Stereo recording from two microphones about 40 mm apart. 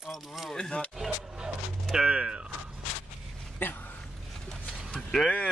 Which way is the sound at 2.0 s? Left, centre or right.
Right.